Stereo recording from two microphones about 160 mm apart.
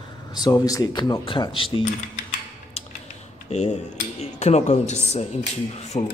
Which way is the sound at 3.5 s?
45° left (ahead or behind).